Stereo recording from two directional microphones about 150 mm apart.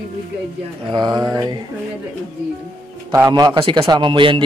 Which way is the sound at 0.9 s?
30° right (ahead or behind).